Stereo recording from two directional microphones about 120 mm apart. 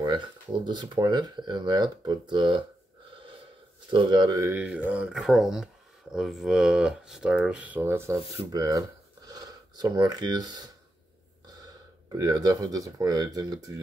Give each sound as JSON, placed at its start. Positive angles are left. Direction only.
{"t": 0.0, "sound": "speech", "side_deg": -40}
{"t": 3.2, "sound": "snort", "side_deg": -45}
{"t": 3.9, "sound": "speech", "side_deg": -40}
{"t": 4.4, "sound": "speech", "side_deg": -20}
{"t": 8.5, "sound": "speech", "side_deg": -30}